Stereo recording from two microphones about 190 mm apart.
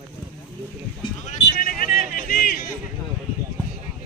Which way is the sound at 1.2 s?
45° left (ahead or behind).